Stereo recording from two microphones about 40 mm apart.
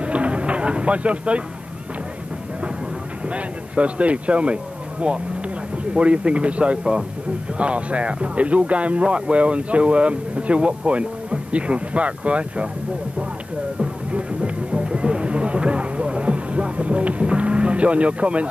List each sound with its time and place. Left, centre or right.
0.0 s a sound: right
3.3 s speech: right
14.1 s music: right